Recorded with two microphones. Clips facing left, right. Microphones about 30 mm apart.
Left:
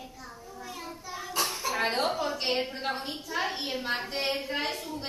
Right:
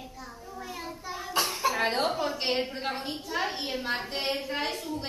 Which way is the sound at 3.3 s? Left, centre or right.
Centre.